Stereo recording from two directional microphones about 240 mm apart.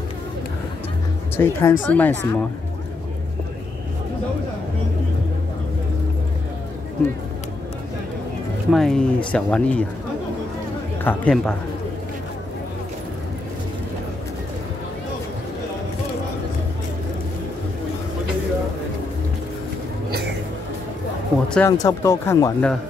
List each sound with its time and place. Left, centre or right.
1.3 s speech: centre
8.7 s speech: centre
11.1 s speech: centre
21.5 s speech: centre